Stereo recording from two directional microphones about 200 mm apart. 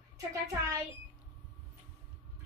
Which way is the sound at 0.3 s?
15° right (ahead or behind).